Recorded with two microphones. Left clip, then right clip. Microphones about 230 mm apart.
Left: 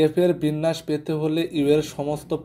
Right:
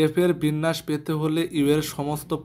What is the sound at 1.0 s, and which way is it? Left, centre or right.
Speech, right.